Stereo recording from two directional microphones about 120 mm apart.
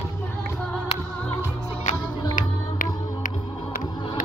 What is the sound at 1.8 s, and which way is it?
Music, 90° left.